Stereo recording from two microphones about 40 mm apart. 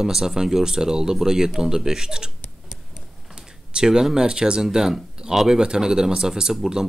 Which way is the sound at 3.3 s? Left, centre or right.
Centre.